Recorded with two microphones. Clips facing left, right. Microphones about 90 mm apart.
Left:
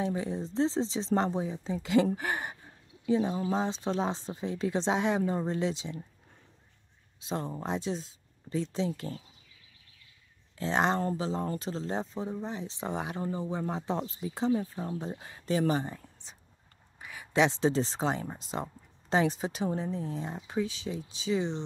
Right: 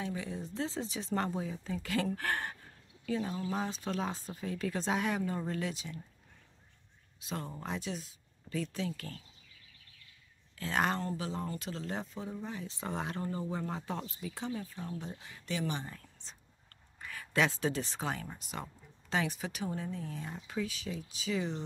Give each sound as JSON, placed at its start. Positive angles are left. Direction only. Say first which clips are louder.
{"t": 0.0, "sound": "speech", "louder": "left 7 dB", "side_deg": 30}
{"t": 7.2, "sound": "speech", "louder": "left 6 dB", "side_deg": 25}
{"t": 10.6, "sound": "speech", "louder": "left 5 dB", "side_deg": 25}
{"t": 15.8, "sound": "speech", "louder": "left 7 dB", "side_deg": 20}